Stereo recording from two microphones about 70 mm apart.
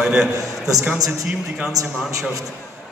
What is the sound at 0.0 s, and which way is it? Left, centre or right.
Speech, centre.